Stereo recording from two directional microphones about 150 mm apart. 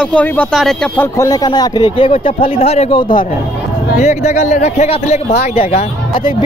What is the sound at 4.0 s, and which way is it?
Speech, 50° left (ahead or behind).